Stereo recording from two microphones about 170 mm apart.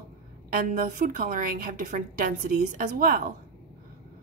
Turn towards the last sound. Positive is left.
turn(degrees=-55)  # may be behind; listen again after turning